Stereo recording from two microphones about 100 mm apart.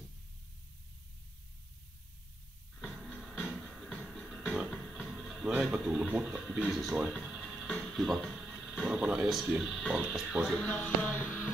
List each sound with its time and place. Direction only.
2.8 s music: 5° right (ahead or behind)
4.9 s speech: centre (ahead or behind)
7.0 s a sound: 5° right (ahead or behind)
7.6 s speech: 5° left (ahead or behind)
10.5 s music: 10° left (ahead or behind)